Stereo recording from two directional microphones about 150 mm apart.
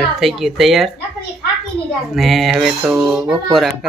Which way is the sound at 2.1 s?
Centre (ahead or behind).